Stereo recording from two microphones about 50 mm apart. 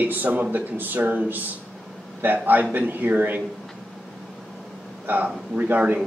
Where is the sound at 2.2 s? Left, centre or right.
Right.